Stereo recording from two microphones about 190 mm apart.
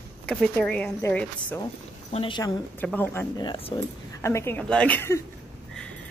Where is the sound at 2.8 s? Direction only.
10° left (ahead or behind).